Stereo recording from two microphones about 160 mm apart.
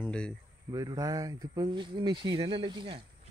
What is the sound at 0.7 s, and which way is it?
Speech, 20° right (ahead or behind).